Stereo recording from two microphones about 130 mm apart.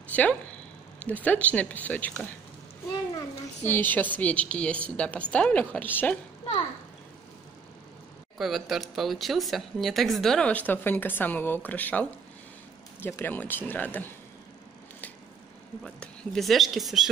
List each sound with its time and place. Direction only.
0.1 s speech: 10° left (ahead or behind)
3.2 s a child's voice: 15° left (ahead or behind)
8.4 s speech: centre (ahead or behind); by 14.1 s 15° left (ahead or behind)
15.8 s speech: 5° left (ahead or behind)